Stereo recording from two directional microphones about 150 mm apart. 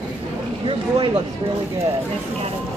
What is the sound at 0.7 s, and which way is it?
Speech, 40° right (ahead or behind).